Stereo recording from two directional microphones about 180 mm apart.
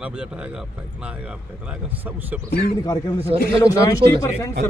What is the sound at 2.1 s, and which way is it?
Speech, 10° right (ahead or behind).